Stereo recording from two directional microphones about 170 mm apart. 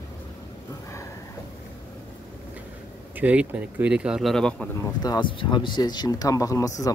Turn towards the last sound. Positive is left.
turn(degrees=20)  # may be behind; listen again after turning